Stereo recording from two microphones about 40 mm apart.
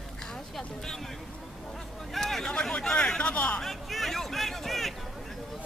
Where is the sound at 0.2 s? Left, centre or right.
Centre.